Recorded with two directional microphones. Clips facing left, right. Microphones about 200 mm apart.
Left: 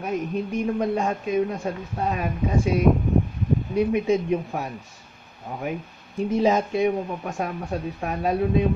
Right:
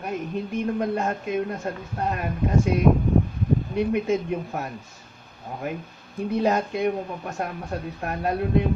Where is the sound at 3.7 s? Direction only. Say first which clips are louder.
Left 4 dB; centre (ahead or behind).